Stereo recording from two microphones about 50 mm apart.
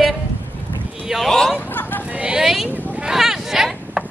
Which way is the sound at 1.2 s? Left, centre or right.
Centre.